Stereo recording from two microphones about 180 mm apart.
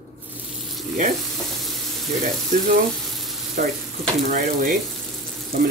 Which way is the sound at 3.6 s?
55° right (ahead or behind).